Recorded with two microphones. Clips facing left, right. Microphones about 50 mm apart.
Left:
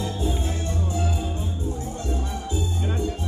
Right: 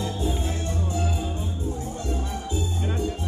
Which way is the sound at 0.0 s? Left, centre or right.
Centre.